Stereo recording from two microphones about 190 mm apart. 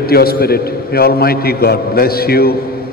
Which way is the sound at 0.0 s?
55° left (ahead or behind).